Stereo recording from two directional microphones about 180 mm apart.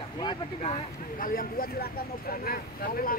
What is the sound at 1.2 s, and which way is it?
Speech, 50° left (ahead or behind).